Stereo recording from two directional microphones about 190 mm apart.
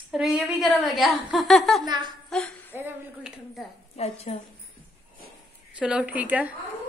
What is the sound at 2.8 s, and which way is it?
Speech, 5° right (ahead or behind).